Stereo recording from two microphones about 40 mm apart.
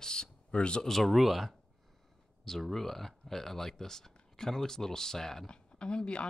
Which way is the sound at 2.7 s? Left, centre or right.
Centre.